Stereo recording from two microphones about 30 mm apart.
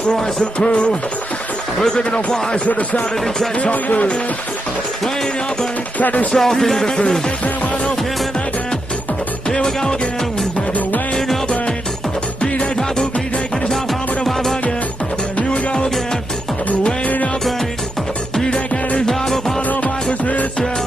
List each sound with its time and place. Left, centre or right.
0.1 s music: left
0.6 s music: left
2.0 s music: left
2.6 s speech: left
5.9 s speech: left
6.3 s speech: centre
6.8 s music: left
9.5 s music: left
12.7 s music: left
15.5 s music: left
19.0 s music: centre